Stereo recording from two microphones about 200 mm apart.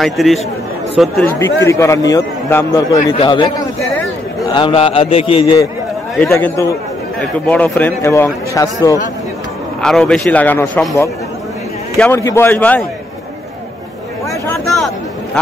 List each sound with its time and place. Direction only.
0.0 s a man's voice: centre (ahead or behind)
1.7 s a man's voice: 15° left (ahead or behind)
6.2 s speech: 15° left (ahead or behind)
9.8 s a man's voice: 5° left (ahead or behind)
14.5 s a sound: centre (ahead or behind)